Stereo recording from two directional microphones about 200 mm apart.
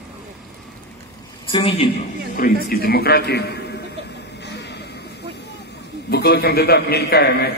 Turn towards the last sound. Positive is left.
turn(degrees=55)  # may be behind; listen again after turning